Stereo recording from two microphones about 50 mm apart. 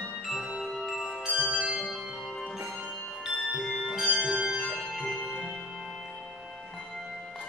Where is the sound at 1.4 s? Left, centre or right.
Right.